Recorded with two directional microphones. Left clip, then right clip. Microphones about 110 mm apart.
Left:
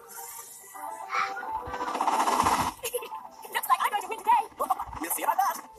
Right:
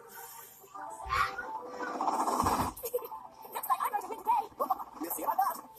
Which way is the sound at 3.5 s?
35° left (ahead or behind).